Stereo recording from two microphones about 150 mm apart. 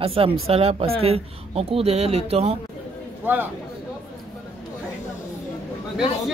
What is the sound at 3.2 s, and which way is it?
Speech, 10° right (ahead or behind).